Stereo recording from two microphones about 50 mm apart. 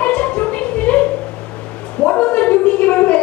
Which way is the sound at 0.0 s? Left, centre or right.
Left.